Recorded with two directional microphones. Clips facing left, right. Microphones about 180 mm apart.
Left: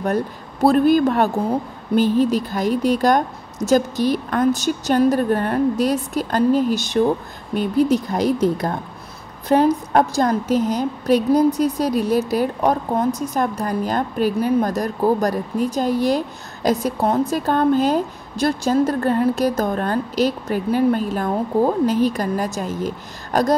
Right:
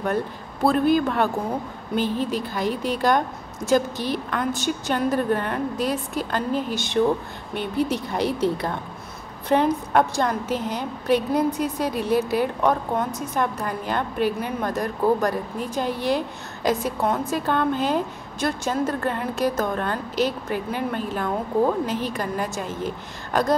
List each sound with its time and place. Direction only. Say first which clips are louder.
0.0 s a woman's voice: left 3 dB; 40° left (ahead or behind)